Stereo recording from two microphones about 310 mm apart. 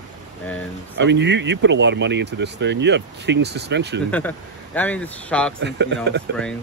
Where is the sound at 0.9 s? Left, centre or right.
Right.